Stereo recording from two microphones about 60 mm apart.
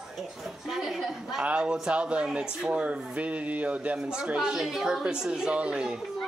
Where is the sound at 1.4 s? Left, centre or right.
Centre.